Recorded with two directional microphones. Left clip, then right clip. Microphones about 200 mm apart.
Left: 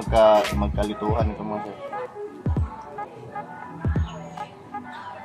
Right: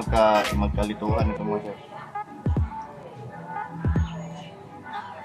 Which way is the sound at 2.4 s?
Centre (ahead or behind).